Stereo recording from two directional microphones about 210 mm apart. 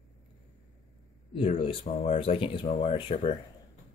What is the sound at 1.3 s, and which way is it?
Speech, 25° left (ahead or behind).